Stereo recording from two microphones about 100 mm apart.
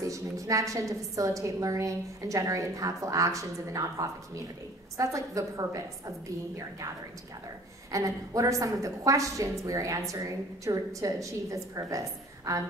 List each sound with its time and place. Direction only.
0.0 s a woman's voice: 35° right (ahead or behind)
7.9 s a woman's voice: 35° right (ahead or behind)